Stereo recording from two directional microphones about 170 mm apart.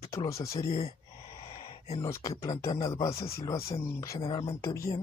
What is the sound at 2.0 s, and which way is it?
Speech, 20° left (ahead or behind).